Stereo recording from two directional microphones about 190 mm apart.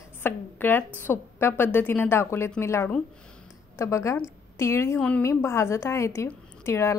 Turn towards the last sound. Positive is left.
turn(degrees=15)  # may be behind; listen again after turning